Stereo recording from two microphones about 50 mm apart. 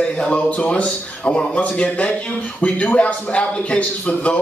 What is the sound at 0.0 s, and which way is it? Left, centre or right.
A man's voice, left.